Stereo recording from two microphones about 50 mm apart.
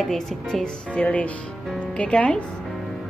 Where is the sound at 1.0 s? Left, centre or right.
Left.